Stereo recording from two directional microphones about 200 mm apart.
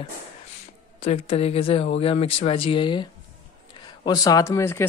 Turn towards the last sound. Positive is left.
turn(degrees=15)  # may be behind; listen again after turning